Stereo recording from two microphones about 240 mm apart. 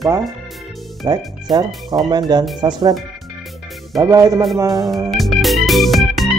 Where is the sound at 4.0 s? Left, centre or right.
Centre.